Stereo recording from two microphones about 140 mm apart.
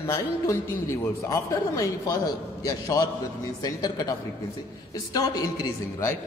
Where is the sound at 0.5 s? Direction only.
20° left (ahead or behind).